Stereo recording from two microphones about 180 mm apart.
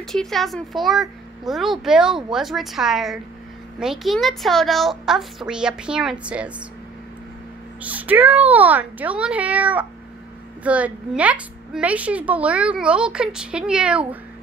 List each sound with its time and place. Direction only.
0.0 s a woman's voice: centre (ahead or behind)
7.8 s a woman's voice: 10° right (ahead or behind)